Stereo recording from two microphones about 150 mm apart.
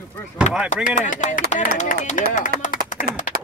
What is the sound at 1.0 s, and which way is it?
Speech, 60° left (ahead or behind).